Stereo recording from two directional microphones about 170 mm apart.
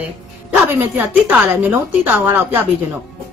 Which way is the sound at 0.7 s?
10° right (ahead or behind).